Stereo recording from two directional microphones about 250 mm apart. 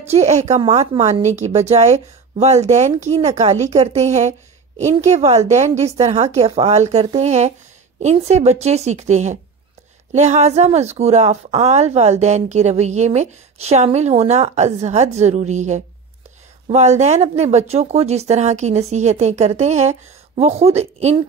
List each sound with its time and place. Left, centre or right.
0.1 s a woman's voice: right